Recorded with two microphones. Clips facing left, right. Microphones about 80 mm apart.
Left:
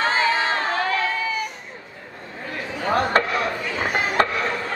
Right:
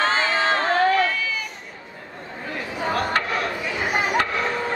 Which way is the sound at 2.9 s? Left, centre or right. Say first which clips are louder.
Left 4 dB; left.